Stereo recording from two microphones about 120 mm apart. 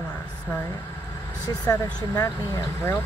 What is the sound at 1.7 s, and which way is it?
Speech, 25° left (ahead or behind).